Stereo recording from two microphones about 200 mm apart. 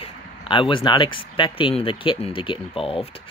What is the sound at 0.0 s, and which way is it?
Speech, 25° left (ahead or behind).